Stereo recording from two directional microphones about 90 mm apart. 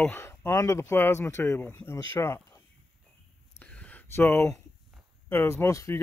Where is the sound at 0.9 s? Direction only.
25° left (ahead or behind).